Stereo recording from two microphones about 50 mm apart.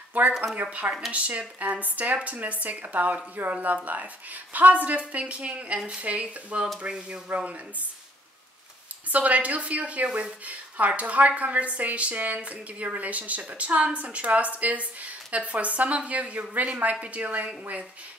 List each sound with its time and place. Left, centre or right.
0.2 s a woman's voice: right
9.1 s a woman's voice: right
10.0 s speech: centre
10.4 s a woman's voice: right